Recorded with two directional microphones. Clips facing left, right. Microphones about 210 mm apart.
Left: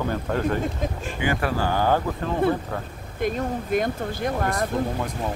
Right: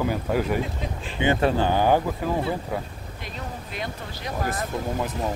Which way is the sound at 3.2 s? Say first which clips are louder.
Left 12 dB; 50° left (ahead or behind).